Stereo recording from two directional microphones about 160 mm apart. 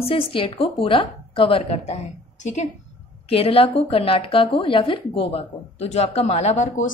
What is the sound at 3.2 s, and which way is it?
A woman's voice, 35° left (ahead or behind).